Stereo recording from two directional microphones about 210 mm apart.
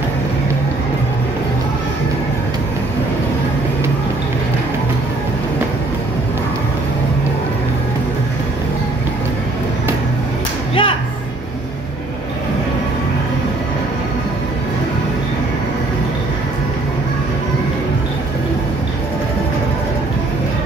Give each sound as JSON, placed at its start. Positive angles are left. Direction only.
{"t": 10.7, "sound": "music", "side_deg": 25}